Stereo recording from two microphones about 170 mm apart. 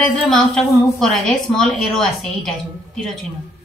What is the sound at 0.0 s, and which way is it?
A woman's voice, centre (ahead or behind).